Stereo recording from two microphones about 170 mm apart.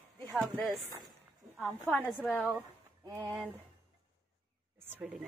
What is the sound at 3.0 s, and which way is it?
Speech, 20° right (ahead or behind).